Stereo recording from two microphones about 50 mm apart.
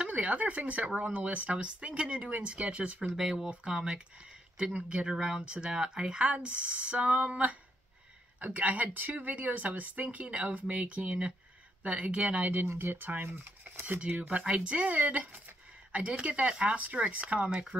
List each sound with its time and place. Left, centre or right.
0.1 s speech: right
3.2 s speech: centre; by 12.4 s right
12.7 s speech: right